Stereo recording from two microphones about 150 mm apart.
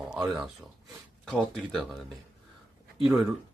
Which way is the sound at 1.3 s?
Centre (ahead or behind).